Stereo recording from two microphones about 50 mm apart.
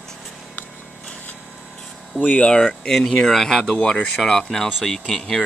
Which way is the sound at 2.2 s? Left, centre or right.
Left.